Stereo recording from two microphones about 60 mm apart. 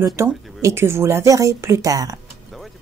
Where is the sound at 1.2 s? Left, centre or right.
Right.